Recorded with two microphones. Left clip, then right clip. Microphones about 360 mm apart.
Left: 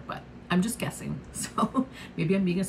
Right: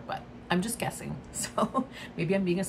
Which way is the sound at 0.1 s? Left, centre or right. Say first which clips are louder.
Even; centre.